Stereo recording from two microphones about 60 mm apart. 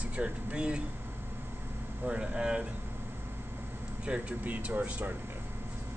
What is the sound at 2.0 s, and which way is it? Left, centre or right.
Speech, centre.